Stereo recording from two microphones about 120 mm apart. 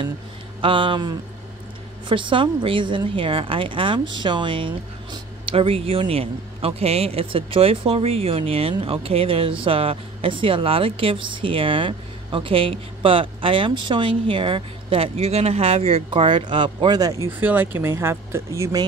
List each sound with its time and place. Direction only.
0.6 s a woman's voice: 45° right (ahead or behind)
17.3 s speech: 15° right (ahead or behind)